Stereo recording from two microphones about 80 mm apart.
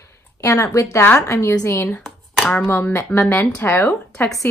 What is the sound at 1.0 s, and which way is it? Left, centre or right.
Speech, left.